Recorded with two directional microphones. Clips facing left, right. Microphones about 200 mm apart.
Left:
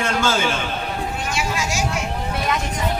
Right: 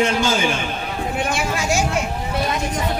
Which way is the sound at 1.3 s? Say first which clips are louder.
Right 2 dB; 55° right (ahead or behind).